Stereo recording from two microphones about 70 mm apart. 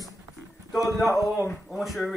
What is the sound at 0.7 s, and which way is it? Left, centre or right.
Speech, centre.